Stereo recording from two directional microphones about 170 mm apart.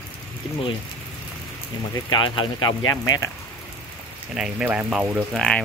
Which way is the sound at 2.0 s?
25° left (ahead or behind).